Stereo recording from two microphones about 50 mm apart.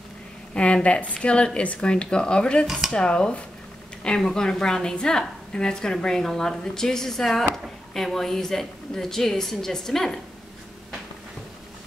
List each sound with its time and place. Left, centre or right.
0.5 s speech: left
2.6 s speech: centre
2.9 s a woman's voice: centre